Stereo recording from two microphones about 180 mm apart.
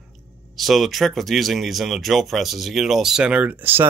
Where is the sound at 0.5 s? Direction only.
Centre (ahead or behind).